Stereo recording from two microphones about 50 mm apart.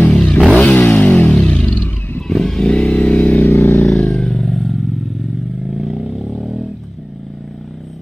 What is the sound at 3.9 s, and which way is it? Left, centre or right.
Vehicle, centre.